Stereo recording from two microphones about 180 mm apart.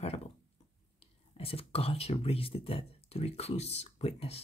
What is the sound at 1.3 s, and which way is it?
Speech, 30° left (ahead or behind).